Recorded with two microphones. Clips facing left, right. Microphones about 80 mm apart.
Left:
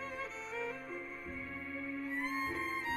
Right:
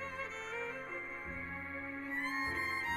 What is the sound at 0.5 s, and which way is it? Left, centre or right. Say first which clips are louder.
Music: left 3 dB; right.